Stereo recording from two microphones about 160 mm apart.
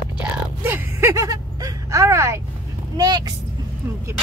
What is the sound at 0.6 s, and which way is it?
Speech, 15° right (ahead or behind).